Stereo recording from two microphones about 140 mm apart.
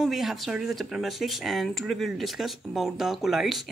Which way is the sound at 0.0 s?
Centre (ahead or behind).